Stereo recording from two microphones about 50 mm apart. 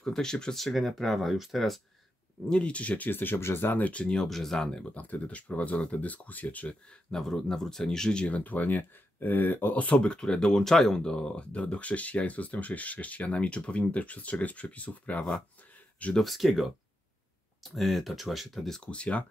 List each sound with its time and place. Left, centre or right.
0.0 s speech: centre
2.4 s speech: centre
3.1 s speech: left
3.9 s speech: left
4.2 s speech: centre
4.9 s speech: left
6.9 s speech: centre
16.2 s speech: centre
17.6 s speech: centre
18.8 s speech: left